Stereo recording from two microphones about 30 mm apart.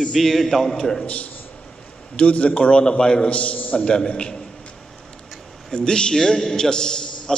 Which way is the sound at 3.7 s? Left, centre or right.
Left.